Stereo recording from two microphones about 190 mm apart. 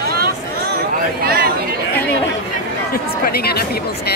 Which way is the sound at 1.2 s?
55° right (ahead or behind).